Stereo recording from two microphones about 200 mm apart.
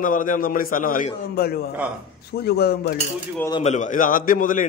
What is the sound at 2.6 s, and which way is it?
Speech, 50° left (ahead or behind).